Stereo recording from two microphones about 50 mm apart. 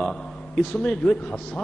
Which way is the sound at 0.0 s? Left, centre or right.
Centre.